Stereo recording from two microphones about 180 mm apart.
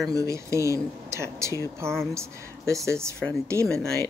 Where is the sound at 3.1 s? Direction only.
5° left (ahead or behind).